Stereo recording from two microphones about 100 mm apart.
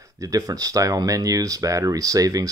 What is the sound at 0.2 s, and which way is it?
Speech, 35° right (ahead or behind).